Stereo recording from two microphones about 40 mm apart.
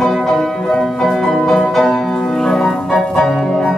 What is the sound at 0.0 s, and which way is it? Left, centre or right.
Music, centre.